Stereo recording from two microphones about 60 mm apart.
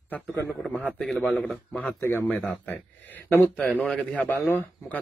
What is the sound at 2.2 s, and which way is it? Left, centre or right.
A man's voice, left.